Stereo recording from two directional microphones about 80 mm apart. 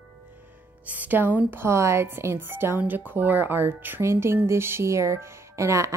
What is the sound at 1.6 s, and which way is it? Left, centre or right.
Speech, right.